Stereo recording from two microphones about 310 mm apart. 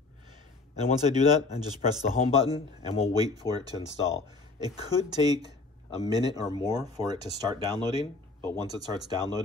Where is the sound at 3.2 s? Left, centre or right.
Centre.